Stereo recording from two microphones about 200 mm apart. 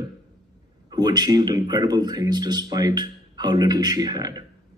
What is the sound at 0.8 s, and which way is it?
Speech, 20° right (ahead or behind).